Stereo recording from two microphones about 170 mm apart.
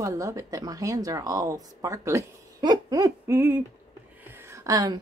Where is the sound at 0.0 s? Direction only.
20° right (ahead or behind).